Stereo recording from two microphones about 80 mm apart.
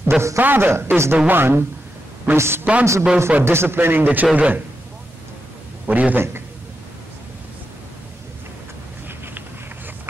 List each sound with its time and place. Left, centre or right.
0.4 s a woman's voice: right
5.9 s speech: centre